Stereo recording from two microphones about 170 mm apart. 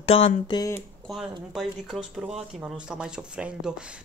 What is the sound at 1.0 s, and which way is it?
Speech, centre (ahead or behind).